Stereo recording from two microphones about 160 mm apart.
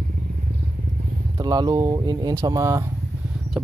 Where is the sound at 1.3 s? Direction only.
25° right (ahead or behind).